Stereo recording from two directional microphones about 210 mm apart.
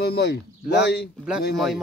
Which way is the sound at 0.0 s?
50° left (ahead or behind).